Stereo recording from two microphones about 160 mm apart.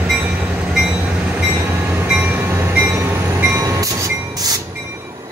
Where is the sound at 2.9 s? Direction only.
15° right (ahead or behind).